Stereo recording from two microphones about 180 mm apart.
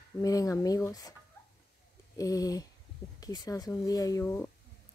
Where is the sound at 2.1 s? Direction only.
20° left (ahead or behind).